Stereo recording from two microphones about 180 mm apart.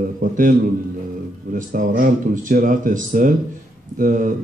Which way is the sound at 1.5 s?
50° right (ahead or behind).